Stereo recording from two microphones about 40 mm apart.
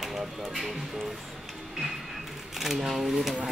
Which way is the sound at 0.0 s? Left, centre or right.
Centre.